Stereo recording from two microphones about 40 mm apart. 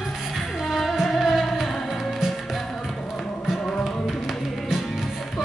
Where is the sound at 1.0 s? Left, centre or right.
Centre.